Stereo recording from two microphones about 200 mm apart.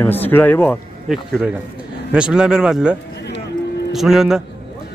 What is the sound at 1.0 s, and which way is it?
Speech, centre (ahead or behind).